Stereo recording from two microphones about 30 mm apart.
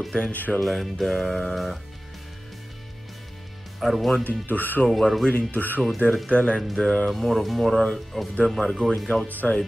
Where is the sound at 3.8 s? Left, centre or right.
Centre.